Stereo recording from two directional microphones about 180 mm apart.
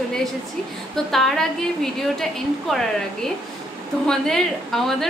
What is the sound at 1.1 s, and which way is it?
A woman's voice, centre (ahead or behind).